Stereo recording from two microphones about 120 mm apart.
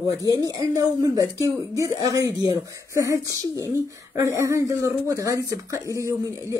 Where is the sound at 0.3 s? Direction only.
30° right (ahead or behind).